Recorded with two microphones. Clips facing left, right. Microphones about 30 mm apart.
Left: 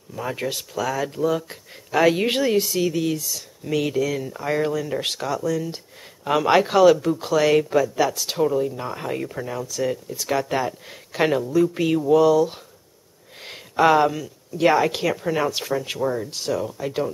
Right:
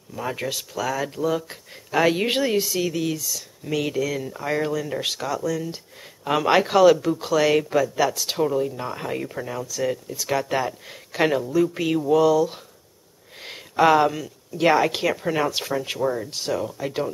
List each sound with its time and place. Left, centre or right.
0.1 s speech: centre
2.5 s speech: centre
2.8 s speech: centre
13.4 s a woman's voice: centre